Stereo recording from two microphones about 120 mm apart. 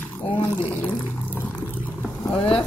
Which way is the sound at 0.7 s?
15° left (ahead or behind).